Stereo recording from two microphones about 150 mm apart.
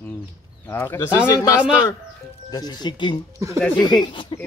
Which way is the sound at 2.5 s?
25° left (ahead or behind).